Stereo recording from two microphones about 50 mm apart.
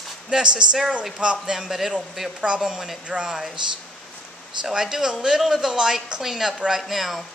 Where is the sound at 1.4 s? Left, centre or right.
Centre.